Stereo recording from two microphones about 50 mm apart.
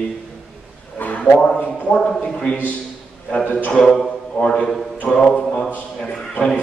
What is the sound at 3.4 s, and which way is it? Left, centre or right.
Speech, left.